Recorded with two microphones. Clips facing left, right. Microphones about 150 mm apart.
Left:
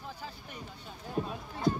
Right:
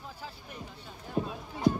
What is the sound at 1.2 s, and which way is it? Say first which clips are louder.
Clip-clop: right 2 dB; centre (ahead or behind).